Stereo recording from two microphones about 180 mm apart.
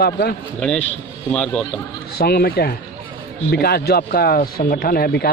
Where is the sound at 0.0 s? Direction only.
60° left (ahead or behind).